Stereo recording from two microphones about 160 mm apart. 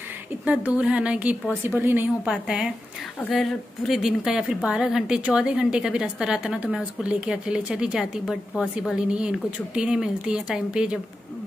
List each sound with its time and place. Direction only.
0.5 s a woman's voice: 10° right (ahead or behind)